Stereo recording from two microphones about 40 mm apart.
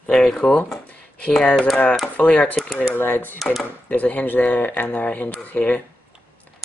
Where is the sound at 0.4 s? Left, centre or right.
Left.